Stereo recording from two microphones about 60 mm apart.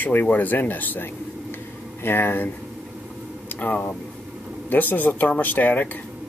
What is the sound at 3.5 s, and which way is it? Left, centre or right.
Speech, left.